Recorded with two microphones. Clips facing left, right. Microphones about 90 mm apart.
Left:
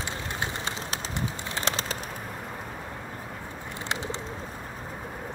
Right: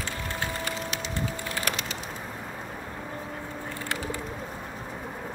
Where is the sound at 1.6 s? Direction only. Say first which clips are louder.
Left 3 dB; 25° left (ahead or behind).